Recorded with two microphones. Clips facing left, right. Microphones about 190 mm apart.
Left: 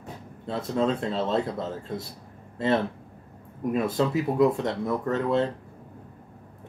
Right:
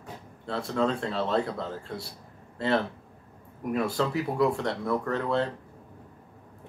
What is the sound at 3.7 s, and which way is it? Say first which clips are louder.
Speech: left 2 dB; 20° left (ahead or behind).